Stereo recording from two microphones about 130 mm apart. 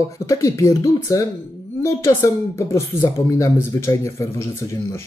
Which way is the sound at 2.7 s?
20° left (ahead or behind).